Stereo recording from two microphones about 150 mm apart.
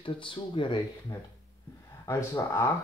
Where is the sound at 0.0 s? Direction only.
35° left (ahead or behind).